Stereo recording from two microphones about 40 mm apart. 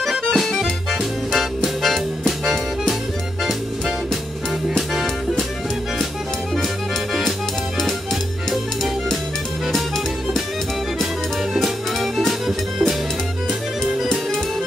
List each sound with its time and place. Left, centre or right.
0.0 s accordion: centre
1.8 s music: centre
4.6 s music: centre
8.5 s music: centre
11.6 s music: centre